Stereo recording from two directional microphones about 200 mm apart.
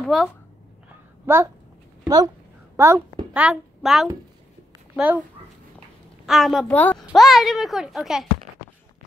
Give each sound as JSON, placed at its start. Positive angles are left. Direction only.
{"t": 0.0, "sound": "speech", "side_deg": 0}
{"t": 1.2, "sound": "a child's voice", "side_deg": -10}
{"t": 6.2, "sound": "a woman's voice", "side_deg": 0}